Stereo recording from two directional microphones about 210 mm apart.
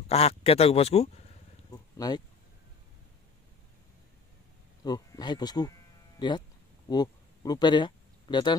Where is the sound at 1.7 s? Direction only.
20° left (ahead or behind).